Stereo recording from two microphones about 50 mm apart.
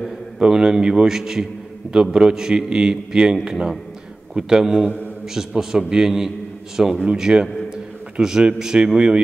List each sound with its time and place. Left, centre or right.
0.4 s a man's voice: centre